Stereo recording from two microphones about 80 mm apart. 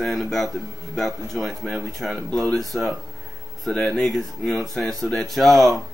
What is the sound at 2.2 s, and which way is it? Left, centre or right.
Speech, right.